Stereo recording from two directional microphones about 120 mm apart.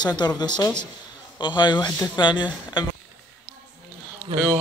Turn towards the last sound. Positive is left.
turn(degrees=-50)  # may be behind; listen again after turning